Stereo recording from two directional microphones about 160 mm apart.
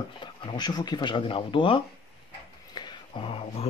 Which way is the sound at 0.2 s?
30° left (ahead or behind).